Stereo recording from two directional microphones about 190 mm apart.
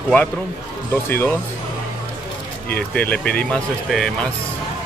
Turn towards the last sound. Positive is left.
turn(degrees=0)  # may be behind; listen again after turning